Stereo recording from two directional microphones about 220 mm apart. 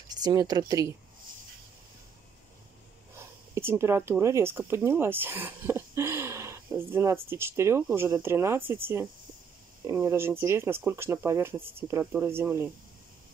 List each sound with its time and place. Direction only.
0.1 s speech: 20° right (ahead or behind)
3.2 s speech: 10° right (ahead or behind)